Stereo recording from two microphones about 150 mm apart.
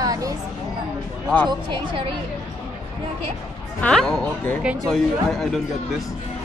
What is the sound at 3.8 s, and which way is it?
Speech, 5° left (ahead or behind).